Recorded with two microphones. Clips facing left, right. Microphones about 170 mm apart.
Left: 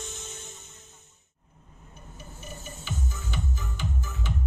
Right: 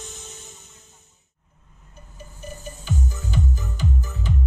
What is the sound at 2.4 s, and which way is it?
Music, 40° right (ahead or behind).